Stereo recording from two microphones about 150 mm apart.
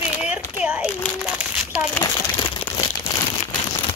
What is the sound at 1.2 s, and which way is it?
Crumpling, 5° right (ahead or behind).